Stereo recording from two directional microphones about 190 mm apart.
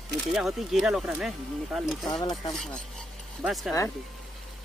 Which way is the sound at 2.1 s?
20° left (ahead or behind).